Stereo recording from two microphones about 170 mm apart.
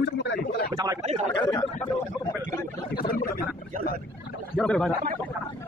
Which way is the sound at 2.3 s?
15° left (ahead or behind).